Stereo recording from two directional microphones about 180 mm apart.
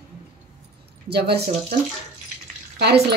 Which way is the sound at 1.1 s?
65° right (ahead or behind).